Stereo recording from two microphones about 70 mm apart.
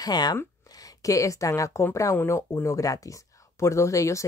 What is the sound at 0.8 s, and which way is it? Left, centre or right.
Speech, left.